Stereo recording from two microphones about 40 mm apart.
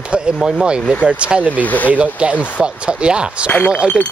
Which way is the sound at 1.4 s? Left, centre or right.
Left.